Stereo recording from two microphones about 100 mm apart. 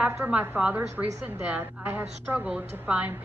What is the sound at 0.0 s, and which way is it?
A woman's voice, 15° right (ahead or behind).